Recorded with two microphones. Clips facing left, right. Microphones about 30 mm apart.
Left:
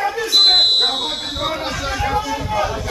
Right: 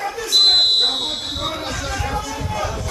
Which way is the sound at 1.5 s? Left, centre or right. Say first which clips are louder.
Left 3 dB; centre.